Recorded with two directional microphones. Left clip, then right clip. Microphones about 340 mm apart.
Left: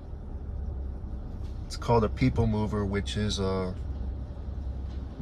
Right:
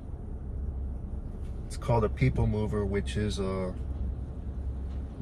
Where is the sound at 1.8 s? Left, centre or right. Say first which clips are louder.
Left 3 dB; centre.